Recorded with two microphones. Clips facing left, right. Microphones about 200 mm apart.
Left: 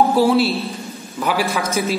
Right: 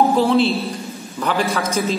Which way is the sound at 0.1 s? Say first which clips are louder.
Even; 5° left (ahead or behind).